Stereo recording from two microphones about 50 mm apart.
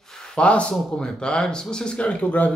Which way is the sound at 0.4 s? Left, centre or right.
Left.